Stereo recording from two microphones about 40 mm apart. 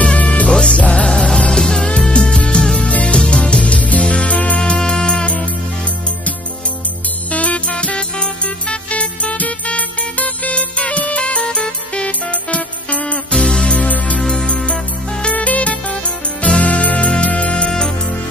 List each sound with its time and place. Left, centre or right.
0.0 s music: left
0.5 s music: centre
0.7 s music: left
1.0 s music: centre
2.9 s music: left
4.6 s music: left
7.3 s music: left
7.7 s music: left
13.3 s music: left
13.7 s music: left
14.2 s music: left
15.2 s music: left
17.6 s music: centre